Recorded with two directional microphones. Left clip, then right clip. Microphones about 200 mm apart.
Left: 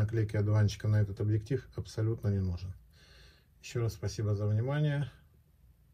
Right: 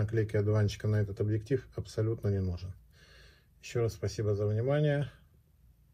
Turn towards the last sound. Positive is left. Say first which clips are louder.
# right 6 dB
turn(degrees=30)  # may be behind; listen again after turning